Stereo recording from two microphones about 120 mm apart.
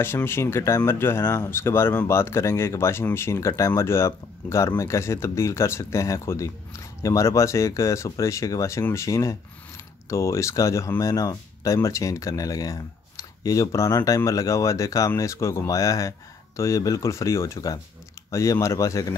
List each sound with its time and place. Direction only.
0.0 s speech: 20° left (ahead or behind)